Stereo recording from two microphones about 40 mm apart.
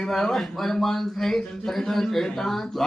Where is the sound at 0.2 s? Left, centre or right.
Centre.